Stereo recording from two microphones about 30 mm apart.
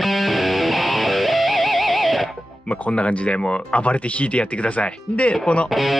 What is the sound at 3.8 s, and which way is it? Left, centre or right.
Speech, left.